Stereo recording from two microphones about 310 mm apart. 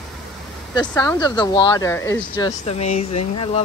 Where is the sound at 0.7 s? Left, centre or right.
Centre.